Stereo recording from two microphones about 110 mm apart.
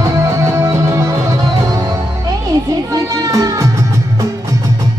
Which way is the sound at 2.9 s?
35° right (ahead or behind).